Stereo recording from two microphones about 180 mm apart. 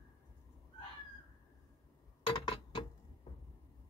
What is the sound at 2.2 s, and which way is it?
Glass, 30° left (ahead or behind).